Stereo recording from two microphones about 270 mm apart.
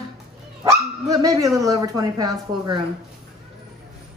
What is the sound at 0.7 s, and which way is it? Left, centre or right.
Dog, centre.